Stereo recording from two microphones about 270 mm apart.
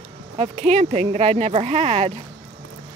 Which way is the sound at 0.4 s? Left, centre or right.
Right.